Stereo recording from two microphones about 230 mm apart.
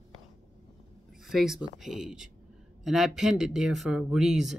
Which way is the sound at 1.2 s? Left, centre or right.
Centre.